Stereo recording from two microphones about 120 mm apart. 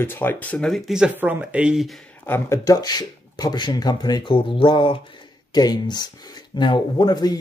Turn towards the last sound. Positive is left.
turn(degrees=35)  # may be behind; listen again after turning